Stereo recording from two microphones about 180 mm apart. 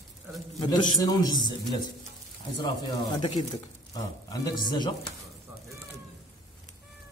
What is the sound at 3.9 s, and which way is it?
Speech, 20° left (ahead or behind).